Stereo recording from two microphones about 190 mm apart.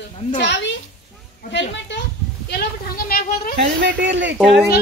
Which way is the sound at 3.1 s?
50° left (ahead or behind).